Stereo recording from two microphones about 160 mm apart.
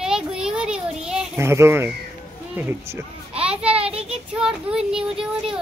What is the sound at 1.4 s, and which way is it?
A child's voice, 15° right (ahead or behind).